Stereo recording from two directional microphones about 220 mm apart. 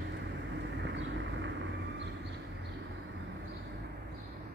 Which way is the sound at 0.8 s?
55° right (ahead or behind).